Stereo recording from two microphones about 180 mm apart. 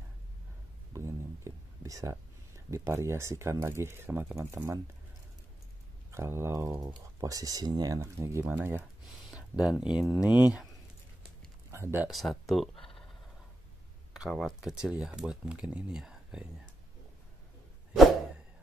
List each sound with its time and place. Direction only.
0.9 s speech: 15° right (ahead or behind)
6.1 s speech: 15° right (ahead or behind)
11.7 s speech: 15° right (ahead or behind)
12.1 s speech: centre (ahead or behind)
14.1 s speech: centre (ahead or behind)